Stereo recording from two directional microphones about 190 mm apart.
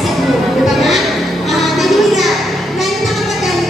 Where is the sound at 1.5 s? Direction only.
Centre (ahead or behind).